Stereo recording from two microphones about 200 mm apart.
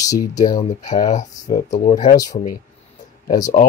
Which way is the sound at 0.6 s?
35° left (ahead or behind).